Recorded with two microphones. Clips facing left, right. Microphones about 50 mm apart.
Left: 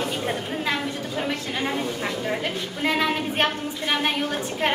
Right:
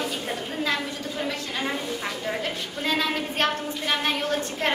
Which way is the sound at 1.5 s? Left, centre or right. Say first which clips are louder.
Left 2 dB; centre.